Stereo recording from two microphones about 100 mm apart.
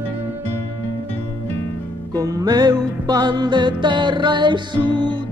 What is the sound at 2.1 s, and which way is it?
Music, 35° right (ahead or behind).